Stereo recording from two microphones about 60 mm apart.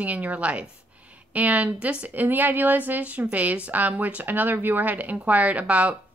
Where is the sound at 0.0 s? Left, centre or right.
Right.